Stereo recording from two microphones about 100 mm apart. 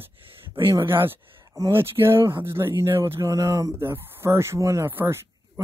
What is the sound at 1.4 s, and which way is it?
Speech, 35° right (ahead or behind).